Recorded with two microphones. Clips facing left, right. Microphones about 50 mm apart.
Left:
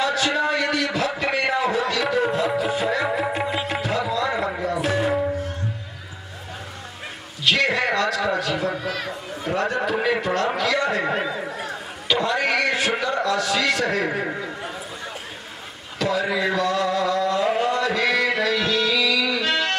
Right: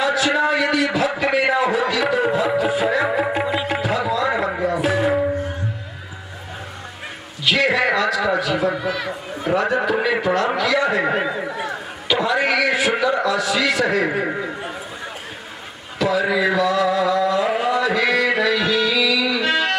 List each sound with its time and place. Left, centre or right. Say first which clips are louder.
0.0 s a sound: right 3 dB; centre
3.1 s music: right 3 dB; centre
7.4 s a man's voice: right 3 dB; centre
8.7 s speech: right 4 dB; right
9.3 s a man's voice: right 5 dB; centre
11.7 s a man's voice: even; centre
16.0 s a sound: right 4 dB; centre